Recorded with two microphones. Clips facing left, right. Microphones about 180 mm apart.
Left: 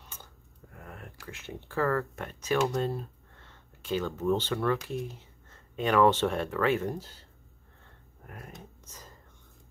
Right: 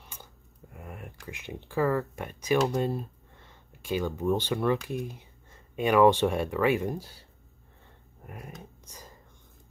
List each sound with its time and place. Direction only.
0.7 s speech: 15° right (ahead or behind)
8.3 s a sound: 15° right (ahead or behind)
8.8 s whispering: 10° right (ahead or behind)